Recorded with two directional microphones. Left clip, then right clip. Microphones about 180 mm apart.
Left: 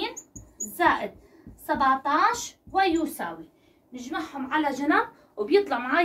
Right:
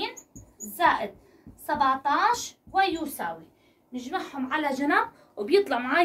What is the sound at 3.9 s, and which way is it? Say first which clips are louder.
A woman's voice: right 1 dB; 50° right (ahead or behind).